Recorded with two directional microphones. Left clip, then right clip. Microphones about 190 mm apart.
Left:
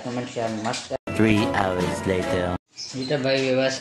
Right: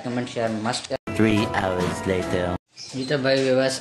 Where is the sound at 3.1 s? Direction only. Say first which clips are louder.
Right 2 dB; 15° right (ahead or behind).